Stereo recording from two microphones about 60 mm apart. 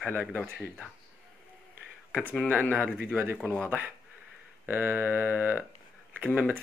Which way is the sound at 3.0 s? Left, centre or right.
Right.